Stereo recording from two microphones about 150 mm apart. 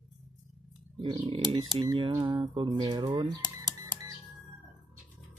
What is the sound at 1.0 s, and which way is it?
Speech, 30° right (ahead or behind).